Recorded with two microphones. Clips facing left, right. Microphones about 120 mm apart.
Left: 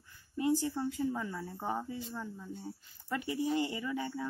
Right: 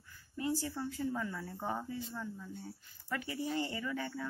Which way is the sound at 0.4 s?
20° left (ahead or behind).